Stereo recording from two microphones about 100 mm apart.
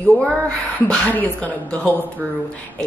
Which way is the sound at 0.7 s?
10° left (ahead or behind).